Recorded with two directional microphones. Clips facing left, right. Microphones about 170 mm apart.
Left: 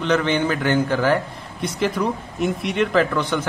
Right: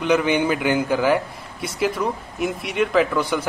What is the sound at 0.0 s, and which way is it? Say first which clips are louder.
Speech: right 1 dB; 10° right (ahead or behind).